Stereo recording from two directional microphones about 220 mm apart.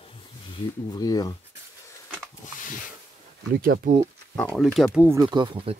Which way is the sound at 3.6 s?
35° right (ahead or behind).